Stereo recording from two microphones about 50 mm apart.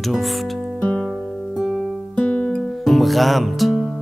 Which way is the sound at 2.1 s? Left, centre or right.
Left.